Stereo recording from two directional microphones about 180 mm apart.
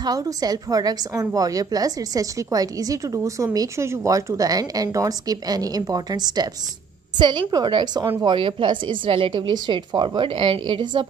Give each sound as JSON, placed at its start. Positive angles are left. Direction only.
{"t": 0.0, "sound": "a woman's voice", "side_deg": -20}